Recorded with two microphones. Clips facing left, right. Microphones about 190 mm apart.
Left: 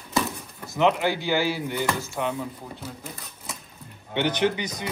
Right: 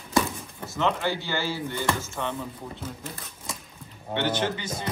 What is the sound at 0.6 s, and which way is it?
Speech, 15° left (ahead or behind).